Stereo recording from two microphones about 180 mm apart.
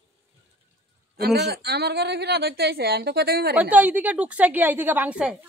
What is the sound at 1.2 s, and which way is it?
A woman's voice, 65° right (ahead or behind).